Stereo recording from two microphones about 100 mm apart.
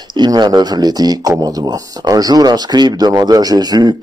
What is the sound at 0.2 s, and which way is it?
Speech, 45° right (ahead or behind).